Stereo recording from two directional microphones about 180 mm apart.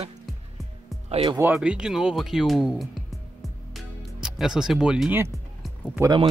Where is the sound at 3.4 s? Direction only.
Centre (ahead or behind).